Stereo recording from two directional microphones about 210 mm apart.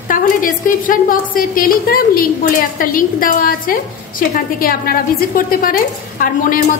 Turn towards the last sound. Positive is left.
turn(degrees=40)  # may be behind; listen again after turning